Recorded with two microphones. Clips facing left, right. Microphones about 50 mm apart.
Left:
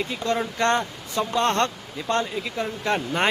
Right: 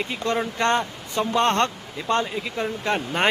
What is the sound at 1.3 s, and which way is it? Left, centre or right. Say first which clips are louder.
Speech: right 2 dB; right.